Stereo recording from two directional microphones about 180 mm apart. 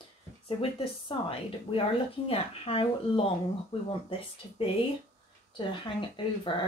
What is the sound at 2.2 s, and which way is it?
Speech, 30° left (ahead or behind).